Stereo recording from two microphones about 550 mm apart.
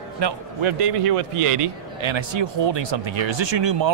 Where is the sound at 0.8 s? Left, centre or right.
Right.